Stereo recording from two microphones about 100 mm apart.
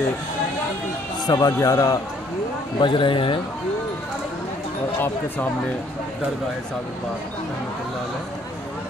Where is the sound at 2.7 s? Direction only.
55° left (ahead or behind).